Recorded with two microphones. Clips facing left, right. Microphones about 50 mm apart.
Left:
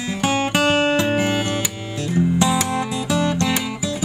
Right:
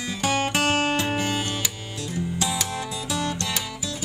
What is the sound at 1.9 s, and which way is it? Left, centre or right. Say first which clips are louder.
Music: left 12 dB; left.